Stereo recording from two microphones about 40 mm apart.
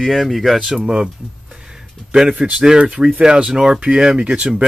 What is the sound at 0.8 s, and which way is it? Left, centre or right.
Speech, right.